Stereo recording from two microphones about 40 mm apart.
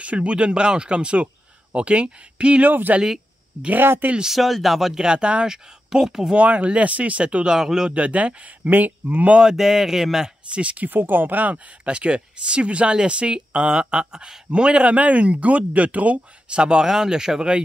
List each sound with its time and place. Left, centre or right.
0.0 s speech: right
2.6 s speech: right
4.2 s speech: centre
4.9 s speech: right
6.3 s speech: right
7.4 s speech: centre
7.9 s speech: right
9.4 s speech: centre
10.5 s speech: right
10.9 s speech: right
11.5 s speech: right
16.8 s speech: centre